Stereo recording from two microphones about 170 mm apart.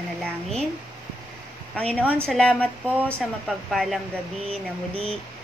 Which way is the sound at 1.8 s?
10° left (ahead or behind).